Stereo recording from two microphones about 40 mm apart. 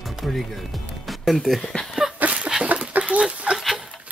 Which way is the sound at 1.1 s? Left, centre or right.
Centre.